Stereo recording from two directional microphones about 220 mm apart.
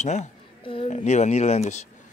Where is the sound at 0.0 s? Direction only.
30° left (ahead or behind).